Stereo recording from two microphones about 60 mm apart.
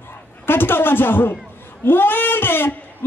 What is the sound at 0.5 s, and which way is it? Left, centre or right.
Speech, left.